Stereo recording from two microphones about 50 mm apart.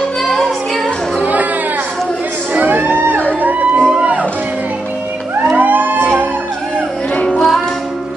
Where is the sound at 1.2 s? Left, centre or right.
Right.